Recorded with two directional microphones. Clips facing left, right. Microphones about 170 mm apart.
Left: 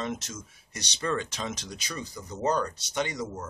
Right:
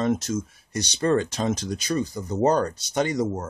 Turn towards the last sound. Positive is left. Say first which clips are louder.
# right 7 dB
turn(degrees=-45)  # may be behind; listen again after turning